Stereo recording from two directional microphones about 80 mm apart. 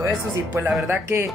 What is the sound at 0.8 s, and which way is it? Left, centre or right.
Speech, right.